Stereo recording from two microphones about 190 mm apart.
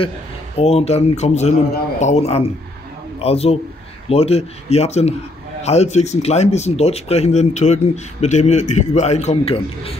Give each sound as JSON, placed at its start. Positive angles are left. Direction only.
{"t": 0.6, "sound": "a man's voice", "side_deg": 35}